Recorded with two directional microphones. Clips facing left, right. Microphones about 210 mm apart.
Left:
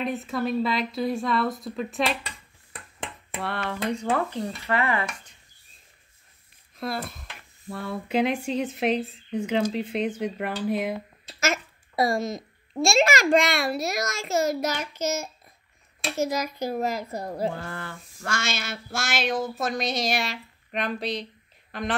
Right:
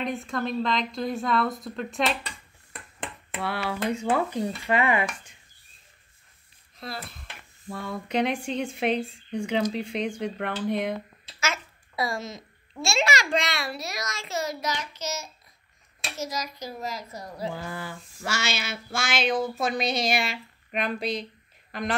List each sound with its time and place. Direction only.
0.0 s speech: 5° left (ahead or behind)
3.3 s speech: 5° right (ahead or behind)
6.8 s speech: 50° left (ahead or behind)
7.7 s speech: 5° left (ahead or behind)
11.2 s a child's voice: 45° left (ahead or behind)
17.6 s speech: 10° right (ahead or behind)